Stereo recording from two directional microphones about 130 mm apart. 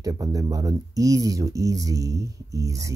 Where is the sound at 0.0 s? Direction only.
25° right (ahead or behind).